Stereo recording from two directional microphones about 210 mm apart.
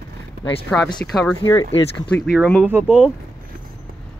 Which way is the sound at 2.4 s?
5° left (ahead or behind).